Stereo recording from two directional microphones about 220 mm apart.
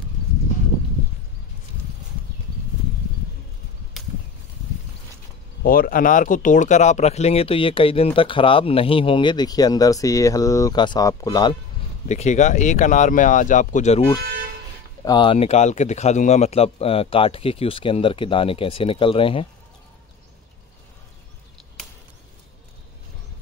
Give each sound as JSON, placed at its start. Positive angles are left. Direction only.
{"t": 5.6, "sound": "speech", "side_deg": 40}
{"t": 12.1, "sound": "speech", "side_deg": 30}